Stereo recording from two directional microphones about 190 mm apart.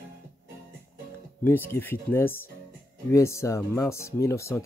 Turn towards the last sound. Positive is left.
turn(degrees=15)  # may be behind; listen again after turning